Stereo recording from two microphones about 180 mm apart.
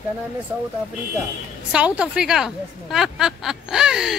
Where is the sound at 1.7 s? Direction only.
5° right (ahead or behind).